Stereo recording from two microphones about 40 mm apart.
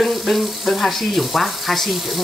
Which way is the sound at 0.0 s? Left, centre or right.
Centre.